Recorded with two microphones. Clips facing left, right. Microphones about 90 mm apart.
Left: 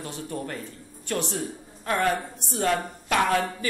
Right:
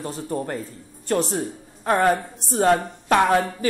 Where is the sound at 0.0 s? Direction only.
35° right (ahead or behind).